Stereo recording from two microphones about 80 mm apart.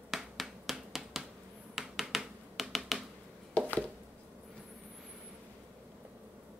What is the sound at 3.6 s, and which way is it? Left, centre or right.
Chopping, centre.